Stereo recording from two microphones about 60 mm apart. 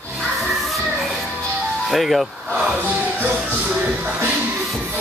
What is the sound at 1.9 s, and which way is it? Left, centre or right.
Speech, centre.